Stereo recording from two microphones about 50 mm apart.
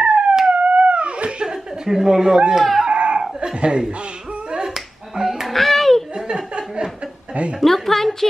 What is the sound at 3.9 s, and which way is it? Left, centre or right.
Finger snapping, centre.